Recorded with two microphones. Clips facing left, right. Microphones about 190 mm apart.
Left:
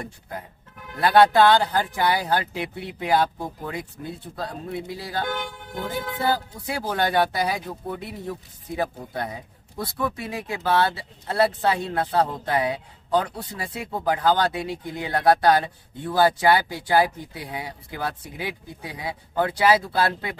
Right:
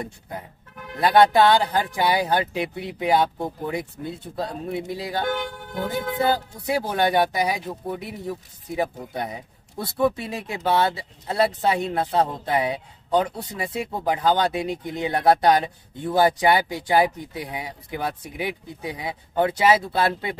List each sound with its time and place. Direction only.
1.0 s a man's voice: 15° right (ahead or behind)
6.2 s a man's voice: 20° right (ahead or behind)